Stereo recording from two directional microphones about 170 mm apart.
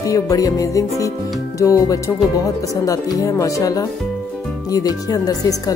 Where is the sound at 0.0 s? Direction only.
20° left (ahead or behind).